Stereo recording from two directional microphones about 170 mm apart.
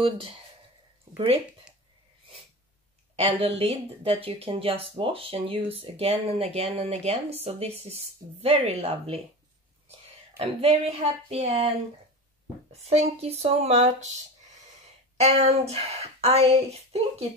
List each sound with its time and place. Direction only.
1.1 s speech: 35° right (ahead or behind)
3.2 s speech: 35° right (ahead or behind)
10.4 s speech: 35° right (ahead or behind)
12.7 s speech: 40° right (ahead or behind)
15.1 s speech: 40° right (ahead or behind)